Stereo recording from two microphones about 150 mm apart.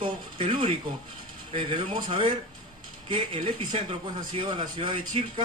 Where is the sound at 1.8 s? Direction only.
35° right (ahead or behind).